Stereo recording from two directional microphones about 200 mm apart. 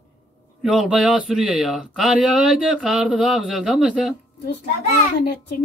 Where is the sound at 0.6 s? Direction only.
Centre (ahead or behind).